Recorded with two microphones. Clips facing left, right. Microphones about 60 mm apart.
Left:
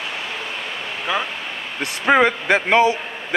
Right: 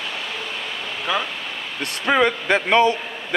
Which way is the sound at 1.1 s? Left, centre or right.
Centre.